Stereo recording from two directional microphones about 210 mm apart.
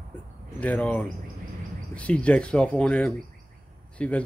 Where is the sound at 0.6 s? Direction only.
5° left (ahead or behind).